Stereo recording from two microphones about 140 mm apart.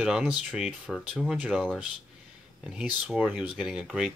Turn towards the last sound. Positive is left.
turn(degrees=-5)  # may be behind; listen again after turning